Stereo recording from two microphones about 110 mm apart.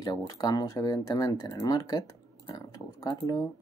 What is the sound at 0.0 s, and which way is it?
Speech, 35° left (ahead or behind).